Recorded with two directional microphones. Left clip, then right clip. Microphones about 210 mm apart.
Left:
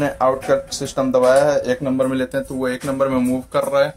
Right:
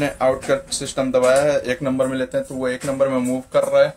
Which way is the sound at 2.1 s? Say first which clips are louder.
Left 1 dB; 10° left (ahead or behind).